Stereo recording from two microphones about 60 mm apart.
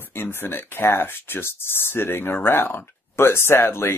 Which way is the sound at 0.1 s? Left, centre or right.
Left.